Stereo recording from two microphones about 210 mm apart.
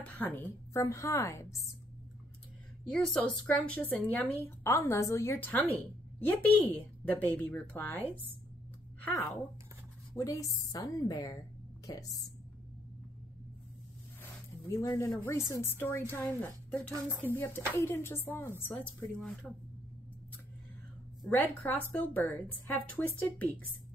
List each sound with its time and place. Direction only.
0.0 s a woman's voice: 10° left (ahead or behind)
2.9 s a woman's voice: 5° left (ahead or behind)
9.0 s speech: 5° left (ahead or behind)
10.1 s a woman's voice: 15° left (ahead or behind)
14.7 s a woman's voice: 15° left (ahead or behind)
21.2 s a woman's voice: 10° left (ahead or behind)